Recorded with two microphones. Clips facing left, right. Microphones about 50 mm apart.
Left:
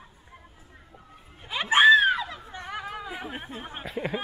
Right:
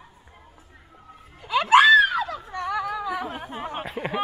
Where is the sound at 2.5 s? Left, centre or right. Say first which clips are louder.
Right 8 dB; right.